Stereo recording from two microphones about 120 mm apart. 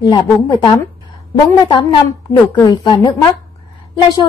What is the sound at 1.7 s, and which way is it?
A woman's voice, 45° left (ahead or behind).